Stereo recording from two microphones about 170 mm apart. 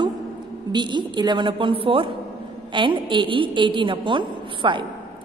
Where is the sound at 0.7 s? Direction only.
25° right (ahead or behind).